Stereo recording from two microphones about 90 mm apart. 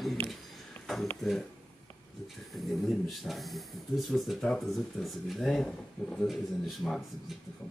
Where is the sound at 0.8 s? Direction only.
Centre (ahead or behind).